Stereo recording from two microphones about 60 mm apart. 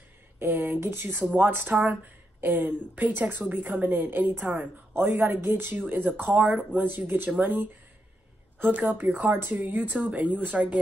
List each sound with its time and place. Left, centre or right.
0.4 s a woman's voice: right